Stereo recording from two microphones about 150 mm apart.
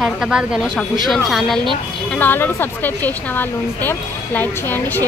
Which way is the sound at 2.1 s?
15° left (ahead or behind).